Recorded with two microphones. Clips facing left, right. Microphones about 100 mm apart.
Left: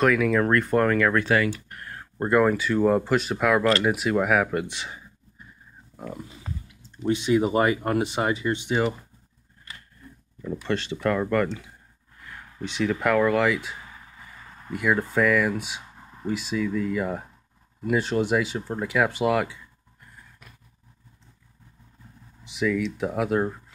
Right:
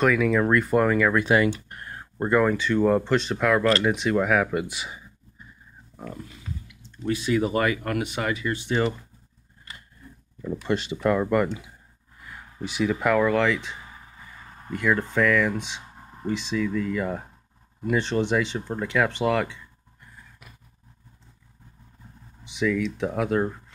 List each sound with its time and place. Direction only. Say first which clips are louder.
0.0 s speech: even; centre (ahead or behind)
1.2 s speech: right 2 dB; 20° right (ahead or behind)
2.1 s speech: left 1 dB; centre (ahead or behind)
6.4 s a sound: left 1 dB; 35° left (ahead or behind)
6.9 s speech: left 3 dB; 25° left (ahead or behind)
8.6 s speech: right 1 dB; 10° left (ahead or behind)
10.4 s speech: right 1 dB; 10° right (ahead or behind); by 20.1 s 5° left (ahead or behind)
22.4 s speech: even; centre (ahead or behind)